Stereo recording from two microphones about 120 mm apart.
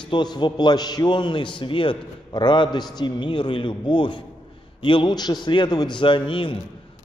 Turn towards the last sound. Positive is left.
turn(degrees=45)  # may be behind; listen again after turning